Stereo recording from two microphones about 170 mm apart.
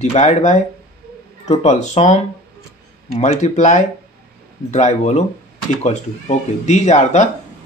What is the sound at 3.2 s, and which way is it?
Speech, 45° left (ahead or behind).